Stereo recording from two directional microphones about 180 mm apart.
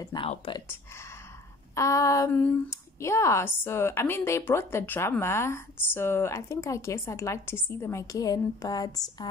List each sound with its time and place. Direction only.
0.0 s speech: 25° left (ahead or behind)
1.8 s speech: 15° left (ahead or behind)